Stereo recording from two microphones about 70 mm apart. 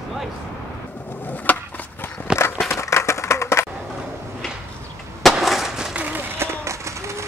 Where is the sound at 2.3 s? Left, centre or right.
Centre.